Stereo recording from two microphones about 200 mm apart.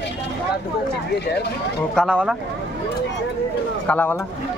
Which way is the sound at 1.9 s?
5° right (ahead or behind).